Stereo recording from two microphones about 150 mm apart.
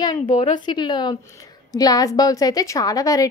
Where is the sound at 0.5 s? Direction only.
30° left (ahead or behind).